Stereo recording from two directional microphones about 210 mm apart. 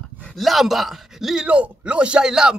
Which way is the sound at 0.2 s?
Centre (ahead or behind).